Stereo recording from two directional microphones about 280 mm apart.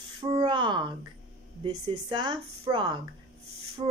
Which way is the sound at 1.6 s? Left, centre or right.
Centre.